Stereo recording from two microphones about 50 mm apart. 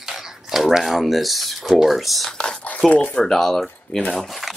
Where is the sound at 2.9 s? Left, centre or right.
Left.